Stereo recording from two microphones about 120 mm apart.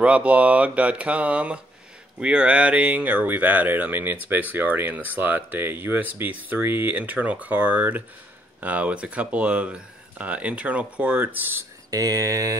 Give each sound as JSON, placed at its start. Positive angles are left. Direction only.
{"t": 0.0, "sound": "speech", "side_deg": -10}
{"t": 11.9, "sound": "speech", "side_deg": -30}